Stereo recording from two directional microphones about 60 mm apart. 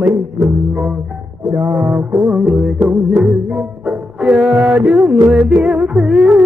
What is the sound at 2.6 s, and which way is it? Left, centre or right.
Music, centre.